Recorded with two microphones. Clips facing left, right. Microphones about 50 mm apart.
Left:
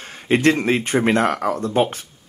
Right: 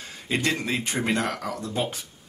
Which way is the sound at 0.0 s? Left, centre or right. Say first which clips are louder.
Left 10 dB; left.